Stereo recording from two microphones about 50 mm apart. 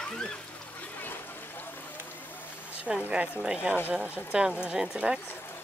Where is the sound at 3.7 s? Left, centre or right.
Right.